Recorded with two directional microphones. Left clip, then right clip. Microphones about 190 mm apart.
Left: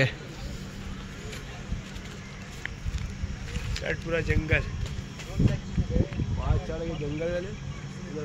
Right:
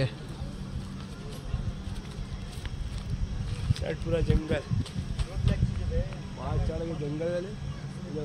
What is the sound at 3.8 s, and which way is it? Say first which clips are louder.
Speech: left 1 dB; 20° right (ahead or behind).